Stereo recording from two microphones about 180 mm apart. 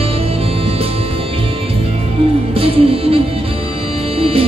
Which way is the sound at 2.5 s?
30° right (ahead or behind).